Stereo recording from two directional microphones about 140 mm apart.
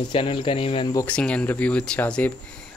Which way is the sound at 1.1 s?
10° left (ahead or behind).